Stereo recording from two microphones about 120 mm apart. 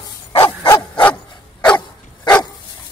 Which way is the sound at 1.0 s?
10° left (ahead or behind).